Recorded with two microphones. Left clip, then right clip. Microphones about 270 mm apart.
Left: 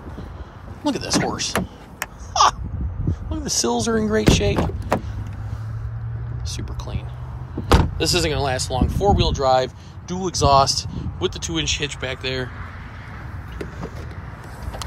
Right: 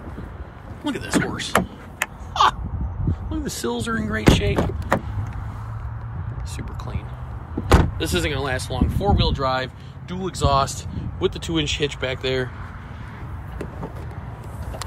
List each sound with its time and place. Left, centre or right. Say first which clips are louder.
0.8 s speech: left 2 dB; centre
2.3 s a sound: left 1 dB; centre
3.3 s speech: left 5 dB; centre
6.6 s whispering: even; centre
7.7 s speech: left 2 dB; centre